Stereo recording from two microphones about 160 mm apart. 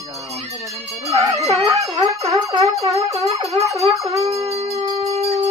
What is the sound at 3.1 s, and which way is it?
Dog, 40° right (ahead or behind).